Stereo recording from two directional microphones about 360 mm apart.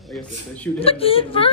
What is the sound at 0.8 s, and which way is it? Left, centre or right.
Speech, centre.